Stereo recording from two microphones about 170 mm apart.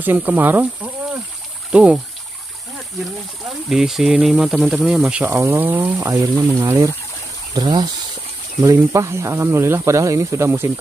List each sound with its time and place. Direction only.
0.0 s speech: 10° right (ahead or behind)
3.6 s speech: centre (ahead or behind)
5.2 s speech: 15° right (ahead or behind)